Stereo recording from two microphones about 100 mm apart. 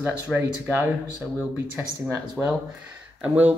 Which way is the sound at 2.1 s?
20° right (ahead or behind).